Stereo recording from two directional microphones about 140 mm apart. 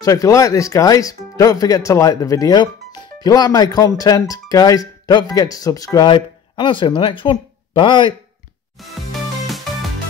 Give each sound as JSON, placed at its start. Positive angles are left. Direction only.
{"t": 0.0, "sound": "speech", "side_deg": 25}